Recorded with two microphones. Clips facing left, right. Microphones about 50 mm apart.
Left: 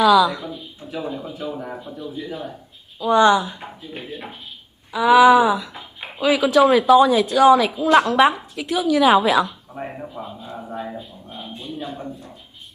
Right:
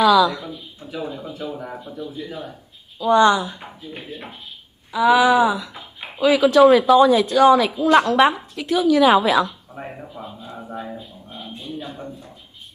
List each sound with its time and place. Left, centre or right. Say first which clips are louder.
0.0 s speech: even; centre
3.1 s speech: even; centre
3.5 s speech: left 1 dB; centre
4.9 s wail: left 3 dB; centre
5.7 s a sound: left 1 dB; centre
6.3 s speech: right 2 dB; centre